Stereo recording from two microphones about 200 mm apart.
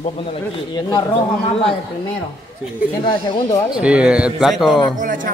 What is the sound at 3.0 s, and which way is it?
Speech, 20° left (ahead or behind).